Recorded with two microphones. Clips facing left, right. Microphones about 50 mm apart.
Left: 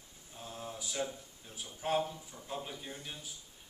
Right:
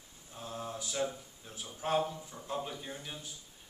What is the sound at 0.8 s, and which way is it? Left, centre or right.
A man's voice, centre.